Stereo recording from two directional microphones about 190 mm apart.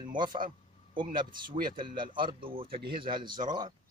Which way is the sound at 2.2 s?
25° right (ahead or behind).